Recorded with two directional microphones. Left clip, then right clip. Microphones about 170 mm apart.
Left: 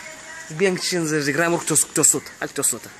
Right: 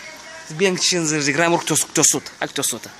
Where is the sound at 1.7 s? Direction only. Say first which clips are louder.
Right 2 dB; 55° right (ahead or behind).